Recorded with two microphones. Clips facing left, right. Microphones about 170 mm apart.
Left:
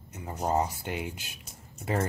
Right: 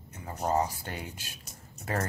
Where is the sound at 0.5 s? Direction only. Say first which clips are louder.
Left 1 dB; 15° left (ahead or behind).